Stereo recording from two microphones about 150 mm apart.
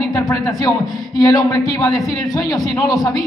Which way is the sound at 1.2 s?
25° left (ahead or behind).